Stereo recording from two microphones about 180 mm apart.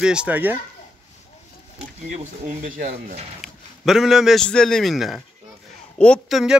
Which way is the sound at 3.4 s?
Centre (ahead or behind).